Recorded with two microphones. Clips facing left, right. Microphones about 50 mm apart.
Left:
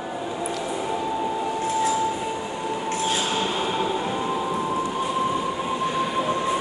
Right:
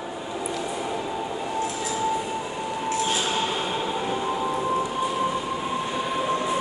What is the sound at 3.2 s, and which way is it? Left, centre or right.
Hammer, centre.